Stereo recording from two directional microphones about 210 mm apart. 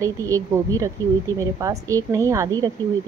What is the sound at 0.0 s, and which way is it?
Speech, 15° right (ahead or behind).